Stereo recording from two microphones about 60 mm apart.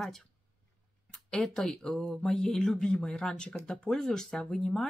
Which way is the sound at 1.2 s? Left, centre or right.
Centre.